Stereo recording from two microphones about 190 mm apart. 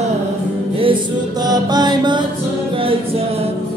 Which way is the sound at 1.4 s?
20° right (ahead or behind).